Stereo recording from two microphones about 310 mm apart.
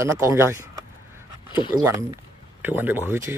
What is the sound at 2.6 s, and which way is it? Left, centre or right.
Speech, centre.